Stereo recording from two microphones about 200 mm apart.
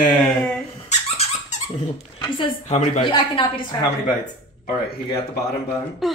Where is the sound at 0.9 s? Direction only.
35° left (ahead or behind).